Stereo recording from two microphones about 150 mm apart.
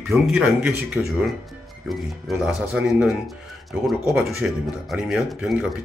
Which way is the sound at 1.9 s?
Centre (ahead or behind).